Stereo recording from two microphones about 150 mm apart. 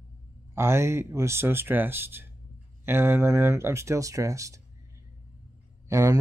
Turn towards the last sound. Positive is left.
turn(degrees=-20)  # may be behind; listen again after turning